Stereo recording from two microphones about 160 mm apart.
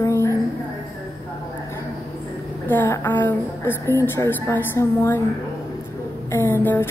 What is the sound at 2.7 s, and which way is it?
A woman's voice, 15° left (ahead or behind).